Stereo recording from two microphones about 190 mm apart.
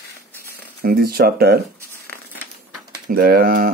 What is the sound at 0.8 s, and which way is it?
Speech, 50° right (ahead or behind).